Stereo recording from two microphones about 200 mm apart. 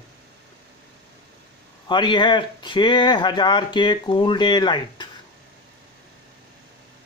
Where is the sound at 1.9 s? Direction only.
20° left (ahead or behind).